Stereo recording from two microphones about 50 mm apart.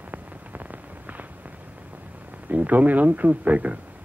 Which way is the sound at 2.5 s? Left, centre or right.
Right.